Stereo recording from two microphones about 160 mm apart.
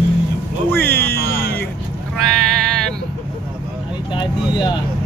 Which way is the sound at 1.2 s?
75° left (ahead or behind).